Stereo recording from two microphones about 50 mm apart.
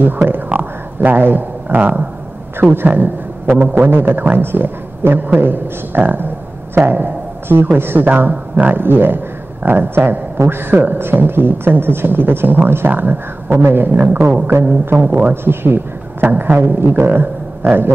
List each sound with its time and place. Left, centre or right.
0.0 s a man's voice: right
13.9 s a man's voice: right